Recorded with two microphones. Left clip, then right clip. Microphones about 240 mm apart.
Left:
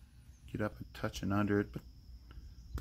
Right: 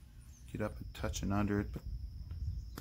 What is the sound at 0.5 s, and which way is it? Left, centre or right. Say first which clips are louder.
Speech: left 2 dB; centre.